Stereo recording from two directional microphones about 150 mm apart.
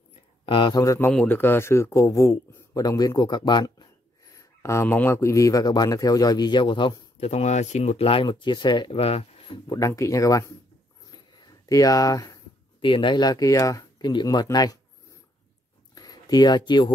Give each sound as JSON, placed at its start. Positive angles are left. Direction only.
{"t": 0.1, "sound": "a sound", "side_deg": 35}
{"t": 0.9, "sound": "a man's voice", "side_deg": 10}
{"t": 4.4, "sound": "a man's voice", "side_deg": 20}
{"t": 7.2, "sound": "speech", "side_deg": 45}
{"t": 8.9, "sound": "speech", "side_deg": 45}
{"t": 9.7, "sound": "a man's voice", "side_deg": 20}
{"t": 11.1, "sound": "a sound", "side_deg": 25}
{"t": 12.8, "sound": "a man's voice", "side_deg": 35}
{"t": 15.9, "sound": "a sound", "side_deg": 25}